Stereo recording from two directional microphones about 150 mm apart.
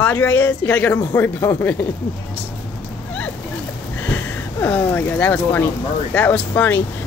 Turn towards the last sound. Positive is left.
turn(degrees=15)  # may be behind; listen again after turning